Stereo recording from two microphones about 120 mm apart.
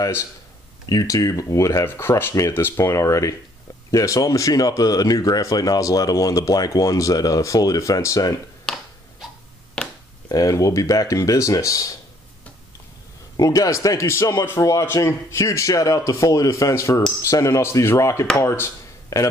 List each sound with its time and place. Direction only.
0.0 s speech: 25° left (ahead or behind)
8.7 s finger snapping: 5° left (ahead or behind)
10.2 s speech: 30° left (ahead or behind)
13.4 s speech: 30° left (ahead or behind)